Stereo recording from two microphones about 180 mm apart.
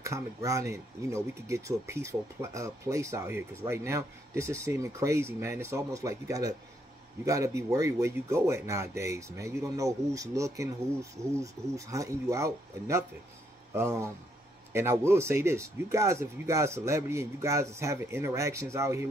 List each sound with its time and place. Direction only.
0.0 s speech: 15° right (ahead or behind)